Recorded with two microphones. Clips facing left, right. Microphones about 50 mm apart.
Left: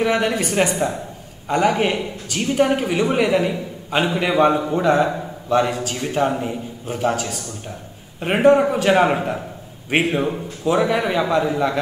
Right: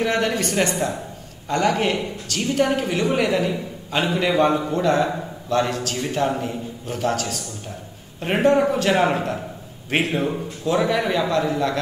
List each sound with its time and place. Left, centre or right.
0.0 s a woman's voice: centre